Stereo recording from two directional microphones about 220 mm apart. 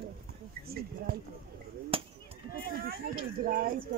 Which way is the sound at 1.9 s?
25° right (ahead or behind).